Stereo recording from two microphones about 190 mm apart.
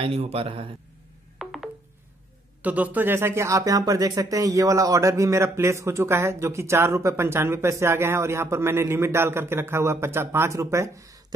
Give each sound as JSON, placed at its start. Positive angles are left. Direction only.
{"t": 0.0, "sound": "a man's voice", "side_deg": -30}
{"t": 1.4, "sound": "telephone dialing", "side_deg": 0}
{"t": 2.6, "sound": "speech", "side_deg": -10}